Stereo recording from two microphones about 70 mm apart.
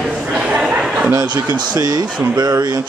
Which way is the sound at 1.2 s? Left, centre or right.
Right.